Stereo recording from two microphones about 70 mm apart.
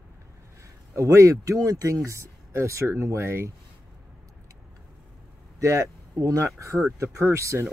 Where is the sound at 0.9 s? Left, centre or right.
Right.